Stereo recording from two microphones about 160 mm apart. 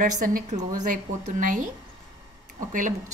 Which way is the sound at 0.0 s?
60° right (ahead or behind).